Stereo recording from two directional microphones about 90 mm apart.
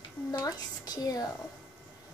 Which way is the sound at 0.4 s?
45° left (ahead or behind).